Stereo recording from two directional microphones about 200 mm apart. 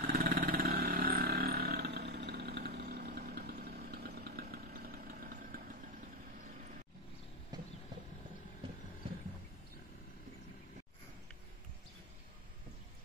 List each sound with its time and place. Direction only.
0.0 s vehicle: 50° right (ahead or behind)
7.5 s horse: 20° right (ahead or behind)